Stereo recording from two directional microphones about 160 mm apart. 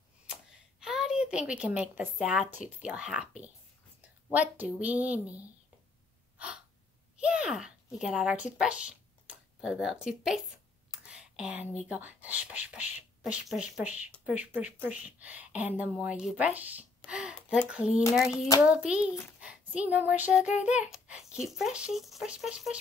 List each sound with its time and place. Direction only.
0.3 s a sound: 5° right (ahead or behind)
2.4 s speech: 45° left (ahead or behind)
2.8 s speech: 5° right (ahead or behind)
6.3 s gasp: 5° right (ahead or behind)
7.2 s a woman's voice: 5° right (ahead or behind)